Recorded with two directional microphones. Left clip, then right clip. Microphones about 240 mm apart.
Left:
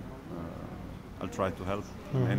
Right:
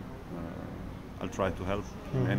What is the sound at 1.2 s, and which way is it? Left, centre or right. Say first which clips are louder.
Speech: even; centre.